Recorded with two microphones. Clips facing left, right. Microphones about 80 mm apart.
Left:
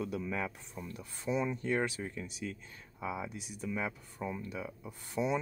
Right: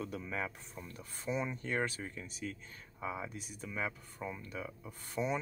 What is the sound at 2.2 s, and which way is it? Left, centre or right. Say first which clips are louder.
Speech: left 2 dB; right.